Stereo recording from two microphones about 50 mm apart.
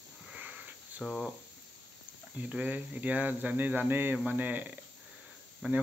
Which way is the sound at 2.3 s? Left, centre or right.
Right.